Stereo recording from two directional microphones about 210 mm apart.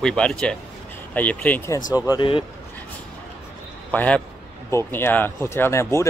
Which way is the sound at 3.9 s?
5° left (ahead or behind).